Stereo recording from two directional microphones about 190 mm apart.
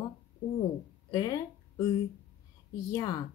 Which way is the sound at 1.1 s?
20° left (ahead or behind).